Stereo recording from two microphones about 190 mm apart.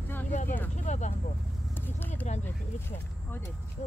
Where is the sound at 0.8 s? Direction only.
40° left (ahead or behind).